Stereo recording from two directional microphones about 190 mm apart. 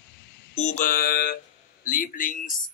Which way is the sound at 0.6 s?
40° left (ahead or behind).